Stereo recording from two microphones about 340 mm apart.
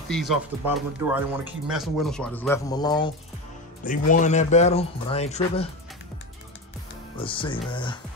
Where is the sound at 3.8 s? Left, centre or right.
Left.